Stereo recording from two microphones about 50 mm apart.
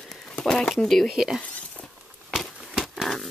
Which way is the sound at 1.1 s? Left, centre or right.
Centre.